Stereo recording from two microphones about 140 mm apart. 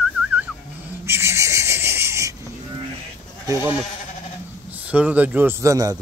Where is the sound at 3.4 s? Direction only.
25° right (ahead or behind).